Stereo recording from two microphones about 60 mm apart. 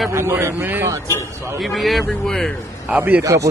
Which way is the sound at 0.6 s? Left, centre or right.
Right.